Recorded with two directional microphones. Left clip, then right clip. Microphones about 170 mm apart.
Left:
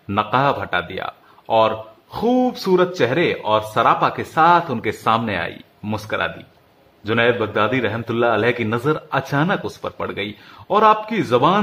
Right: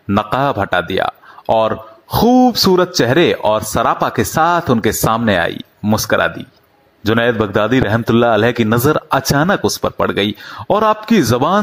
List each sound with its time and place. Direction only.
0.1 s speech: 45° right (ahead or behind)